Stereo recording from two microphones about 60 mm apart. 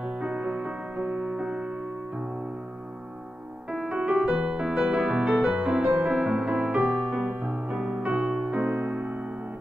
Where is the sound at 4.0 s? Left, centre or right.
Centre.